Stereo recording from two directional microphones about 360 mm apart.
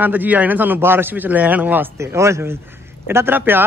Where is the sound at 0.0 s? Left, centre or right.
Centre.